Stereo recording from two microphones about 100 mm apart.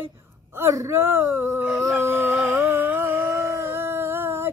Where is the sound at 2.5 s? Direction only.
25° right (ahead or behind).